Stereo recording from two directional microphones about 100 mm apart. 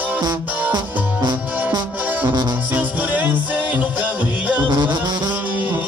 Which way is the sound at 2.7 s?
15° right (ahead or behind).